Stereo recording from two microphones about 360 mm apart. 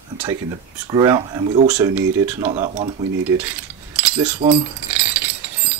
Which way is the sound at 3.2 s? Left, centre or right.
Centre.